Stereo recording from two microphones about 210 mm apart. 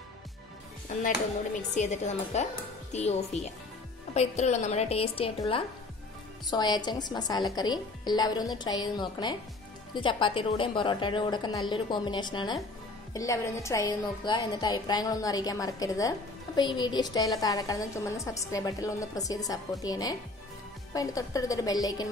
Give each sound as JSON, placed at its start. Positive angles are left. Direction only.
{"t": 1.8, "sound": "a woman's voice", "side_deg": 35}
{"t": 4.1, "sound": "a woman's voice", "side_deg": 30}
{"t": 6.5, "sound": "a woman's voice", "side_deg": 20}